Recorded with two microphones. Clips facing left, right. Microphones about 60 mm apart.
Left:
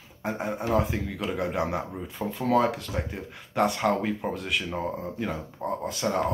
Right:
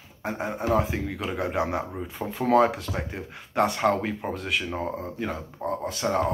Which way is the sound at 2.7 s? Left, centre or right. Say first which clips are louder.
Even; centre.